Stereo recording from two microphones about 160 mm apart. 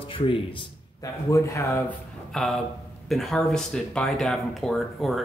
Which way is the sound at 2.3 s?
Centre (ahead or behind).